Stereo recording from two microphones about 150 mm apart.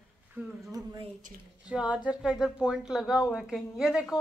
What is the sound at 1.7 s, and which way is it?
A woman's voice, 5° right (ahead or behind).